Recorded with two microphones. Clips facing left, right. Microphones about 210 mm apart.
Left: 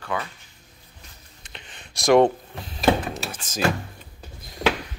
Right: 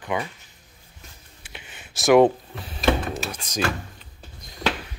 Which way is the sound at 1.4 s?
10° right (ahead or behind).